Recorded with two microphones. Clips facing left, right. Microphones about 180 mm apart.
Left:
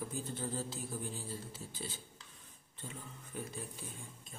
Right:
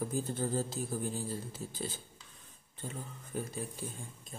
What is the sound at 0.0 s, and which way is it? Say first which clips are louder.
A man's voice: right 6 dB; 45° right (ahead or behind).